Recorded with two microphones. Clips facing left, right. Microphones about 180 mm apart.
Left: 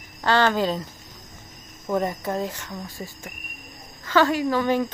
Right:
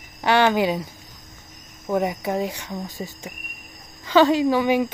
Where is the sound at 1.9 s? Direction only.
10° right (ahead or behind).